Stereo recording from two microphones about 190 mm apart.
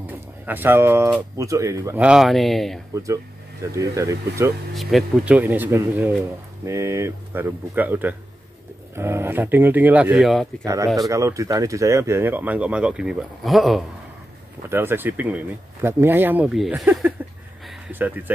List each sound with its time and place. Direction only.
0.0 s speech: 10° right (ahead or behind)
2.0 s speech: centre (ahead or behind)
2.9 s speech: 15° right (ahead or behind)
4.7 s speech: centre (ahead or behind)
10.6 s speech: 15° right (ahead or behind); by 13.8 s centre (ahead or behind)
14.7 s speech: 10° right (ahead or behind)